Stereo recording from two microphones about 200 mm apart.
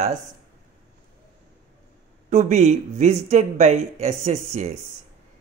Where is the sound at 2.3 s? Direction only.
35° right (ahead or behind).